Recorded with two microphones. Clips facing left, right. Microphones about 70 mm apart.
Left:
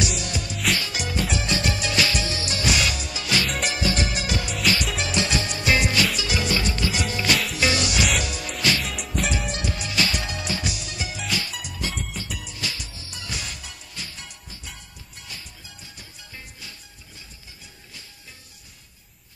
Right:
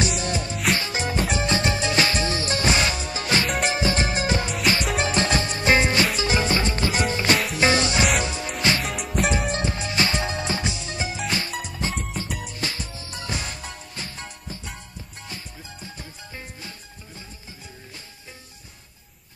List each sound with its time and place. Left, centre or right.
0.0 s music: right
8.8 s music: centre
9.5 s music: right
12.3 s music: right